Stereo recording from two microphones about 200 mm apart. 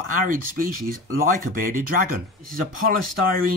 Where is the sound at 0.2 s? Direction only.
45° right (ahead or behind).